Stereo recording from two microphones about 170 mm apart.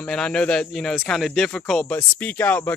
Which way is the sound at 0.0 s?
5° left (ahead or behind).